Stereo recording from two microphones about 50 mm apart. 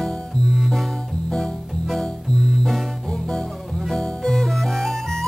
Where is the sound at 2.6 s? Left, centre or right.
Centre.